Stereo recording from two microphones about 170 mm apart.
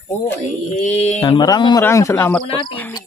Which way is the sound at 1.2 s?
25° left (ahead or behind).